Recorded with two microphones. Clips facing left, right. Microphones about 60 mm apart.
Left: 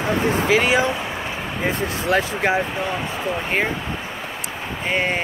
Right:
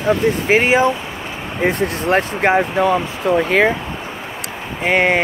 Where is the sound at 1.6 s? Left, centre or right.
Right.